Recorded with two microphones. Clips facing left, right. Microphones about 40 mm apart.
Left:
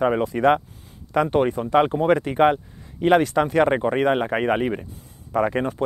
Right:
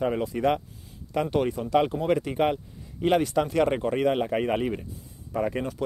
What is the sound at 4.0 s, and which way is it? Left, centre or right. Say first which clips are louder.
Speech: left 4 dB; left.